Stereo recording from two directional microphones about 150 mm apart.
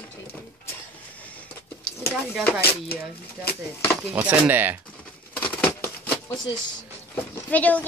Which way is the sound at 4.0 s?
10° right (ahead or behind).